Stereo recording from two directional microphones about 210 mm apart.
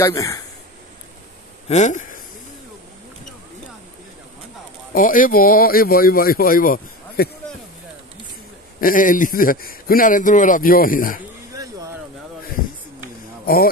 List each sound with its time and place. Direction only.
0.0 s speech: 15° left (ahead or behind)
1.7 s speech: 35° left (ahead or behind)
4.9 s speech: 40° left (ahead or behind)
8.8 s a man's voice: 40° left (ahead or behind)
11.5 s a sound: 15° right (ahead or behind)